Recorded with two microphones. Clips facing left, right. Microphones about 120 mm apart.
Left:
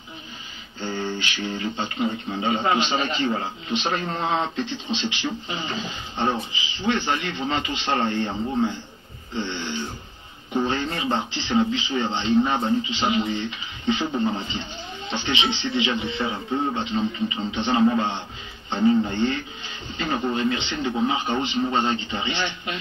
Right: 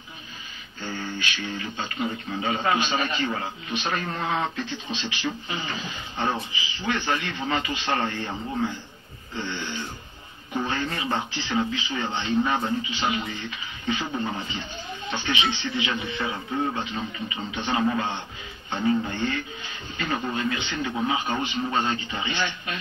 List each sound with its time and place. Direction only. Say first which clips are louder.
0.8 s a man's voice: left 4 dB; 30° left (ahead or behind)
9.3 s a man's voice: left 3 dB; 25° left (ahead or behind)